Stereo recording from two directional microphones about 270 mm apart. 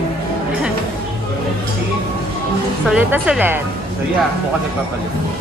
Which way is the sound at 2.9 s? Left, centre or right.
Centre.